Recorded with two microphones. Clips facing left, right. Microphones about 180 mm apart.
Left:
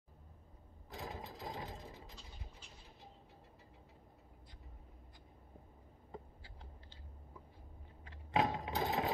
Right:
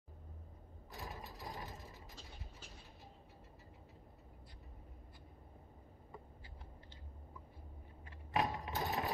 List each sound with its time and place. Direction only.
0.9 s mechanisms: 20° left (ahead or behind)
8.3 s mechanisms: 20° left (ahead or behind)